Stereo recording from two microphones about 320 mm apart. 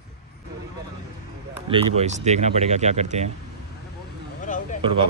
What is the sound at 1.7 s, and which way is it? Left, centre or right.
Speech, centre.